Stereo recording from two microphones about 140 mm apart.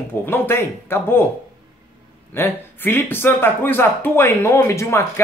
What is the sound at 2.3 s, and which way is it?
Speech, 15° left (ahead or behind).